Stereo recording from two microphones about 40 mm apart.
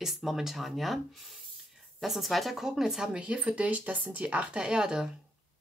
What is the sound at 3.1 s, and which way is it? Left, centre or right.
Speech, right.